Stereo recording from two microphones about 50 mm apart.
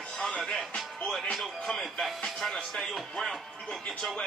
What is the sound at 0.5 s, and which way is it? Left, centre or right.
Speech, centre.